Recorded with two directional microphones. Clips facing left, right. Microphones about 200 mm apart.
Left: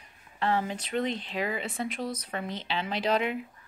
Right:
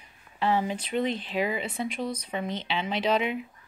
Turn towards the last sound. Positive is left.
turn(degrees=0)  # may be behind; listen again after turning